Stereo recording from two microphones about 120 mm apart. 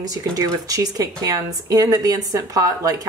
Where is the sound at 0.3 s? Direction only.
25° right (ahead or behind).